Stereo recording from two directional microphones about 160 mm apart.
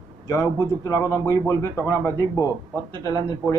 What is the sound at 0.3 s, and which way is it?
A man's voice, 20° left (ahead or behind).